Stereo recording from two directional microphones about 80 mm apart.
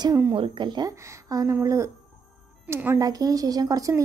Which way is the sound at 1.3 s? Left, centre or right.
Right.